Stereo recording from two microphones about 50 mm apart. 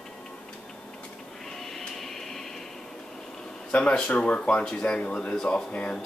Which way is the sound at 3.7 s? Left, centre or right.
Left.